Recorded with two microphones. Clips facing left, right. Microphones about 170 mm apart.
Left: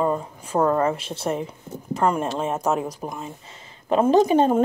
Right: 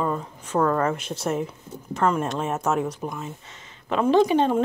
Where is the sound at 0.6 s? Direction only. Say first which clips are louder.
Left 2 dB; 25° left (ahead or behind).